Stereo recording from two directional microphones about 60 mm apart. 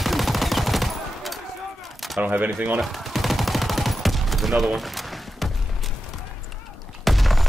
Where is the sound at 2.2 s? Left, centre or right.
Right.